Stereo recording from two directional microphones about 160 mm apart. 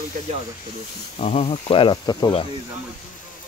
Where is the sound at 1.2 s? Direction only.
40° left (ahead or behind).